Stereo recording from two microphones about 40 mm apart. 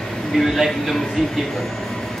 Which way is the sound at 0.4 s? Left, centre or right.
Centre.